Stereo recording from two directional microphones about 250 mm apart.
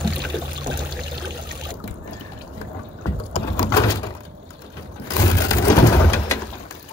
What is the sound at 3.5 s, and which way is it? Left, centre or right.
Bird, centre.